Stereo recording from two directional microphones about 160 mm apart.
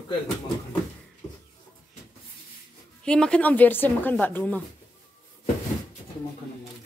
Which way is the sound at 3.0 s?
5° left (ahead or behind).